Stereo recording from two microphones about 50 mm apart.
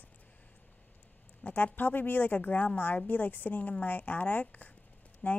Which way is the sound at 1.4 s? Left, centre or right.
Left.